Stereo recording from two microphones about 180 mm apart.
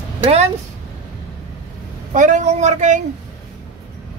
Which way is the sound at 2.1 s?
40° right (ahead or behind).